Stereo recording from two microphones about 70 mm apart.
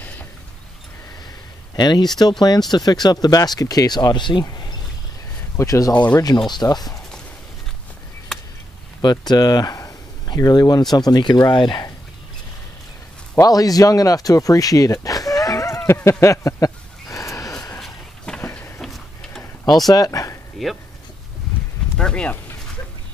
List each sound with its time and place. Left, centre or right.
1.8 s speech: left
2.7 s speech: left
5.6 s speech: left
6.1 s speech: left
6.5 s speech: left
9.0 s speech: left
13.4 s speech: left
15.9 s a sound: left
17.7 s a sound: centre
19.9 s speech: left
20.6 s speech: centre
21.9 s speech: centre